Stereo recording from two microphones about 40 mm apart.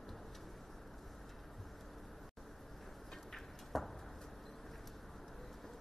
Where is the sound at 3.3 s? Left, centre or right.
Centre.